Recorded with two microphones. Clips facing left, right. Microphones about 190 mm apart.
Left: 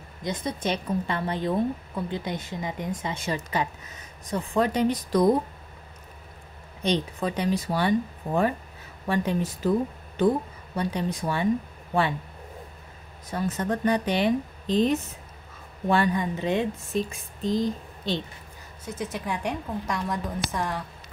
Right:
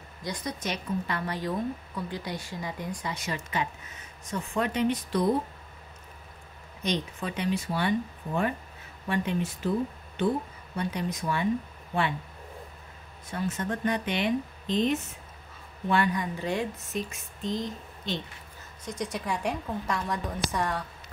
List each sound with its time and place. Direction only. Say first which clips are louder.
0.2 s a woman's voice: left 5 dB; 25° left (ahead or behind); by 5.3 s 40° left (ahead or behind)
6.8 s speech: left 5 dB; 35° left (ahead or behind)
9.1 s speech: left 3 dB; 35° left (ahead or behind)
13.3 s speech: left 4 dB; 35° left (ahead or behind)
18.9 s a woman's voice: left 1 dB; 5° left (ahead or behind)